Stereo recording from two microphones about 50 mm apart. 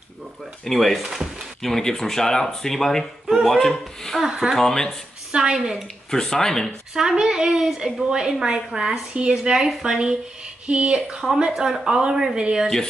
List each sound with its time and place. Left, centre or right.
0.7 s speech: centre
1.0 s speech: centre
1.6 s speech: centre
4.2 s a woman's voice: centre
4.5 s speech: centre
5.3 s a woman's voice: centre
6.0 s speech: centre
6.9 s a woman's voice: centre
10.7 s a woman's voice: centre